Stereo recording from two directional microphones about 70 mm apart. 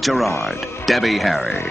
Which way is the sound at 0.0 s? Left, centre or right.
Centre.